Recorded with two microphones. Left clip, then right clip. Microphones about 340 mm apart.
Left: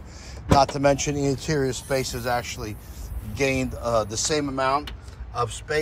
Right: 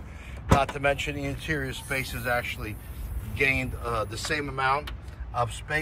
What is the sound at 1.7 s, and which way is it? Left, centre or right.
A man's voice, centre.